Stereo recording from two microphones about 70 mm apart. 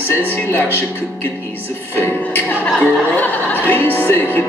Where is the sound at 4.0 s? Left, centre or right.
Left.